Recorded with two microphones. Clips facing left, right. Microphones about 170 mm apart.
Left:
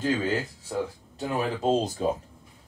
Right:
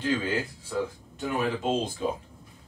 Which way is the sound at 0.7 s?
35° left (ahead or behind).